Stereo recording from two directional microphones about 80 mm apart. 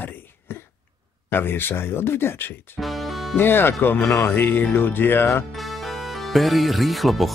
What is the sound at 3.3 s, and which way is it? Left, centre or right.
Speech, left.